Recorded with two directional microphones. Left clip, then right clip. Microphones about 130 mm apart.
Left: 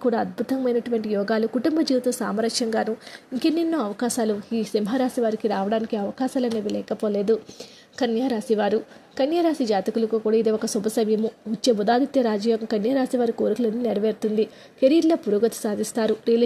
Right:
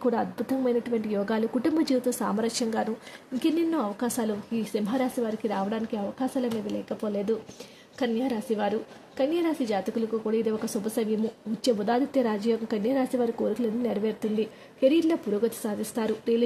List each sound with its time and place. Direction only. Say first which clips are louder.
0.0 s a woman's voice: left 4 dB; 20° left (ahead or behind)